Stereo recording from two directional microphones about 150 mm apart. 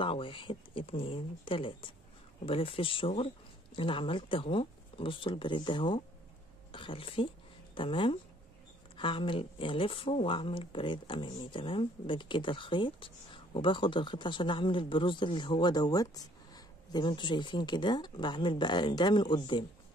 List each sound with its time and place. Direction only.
0.0 s speech: 35° left (ahead or behind)